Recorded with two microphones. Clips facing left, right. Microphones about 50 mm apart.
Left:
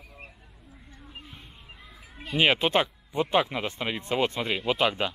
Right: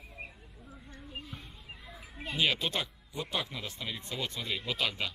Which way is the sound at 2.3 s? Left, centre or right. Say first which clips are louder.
Left 9 dB; left.